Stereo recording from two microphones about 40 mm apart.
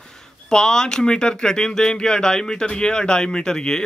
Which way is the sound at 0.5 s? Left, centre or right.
Centre.